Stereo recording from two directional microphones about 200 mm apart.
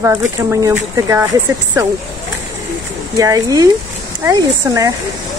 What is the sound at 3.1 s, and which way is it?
Speech, 15° right (ahead or behind).